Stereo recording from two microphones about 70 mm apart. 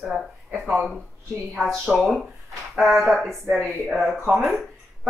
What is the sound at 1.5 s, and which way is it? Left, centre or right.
Speech, centre.